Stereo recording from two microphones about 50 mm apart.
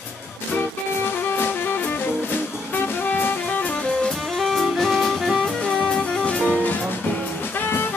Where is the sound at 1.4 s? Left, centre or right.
Left.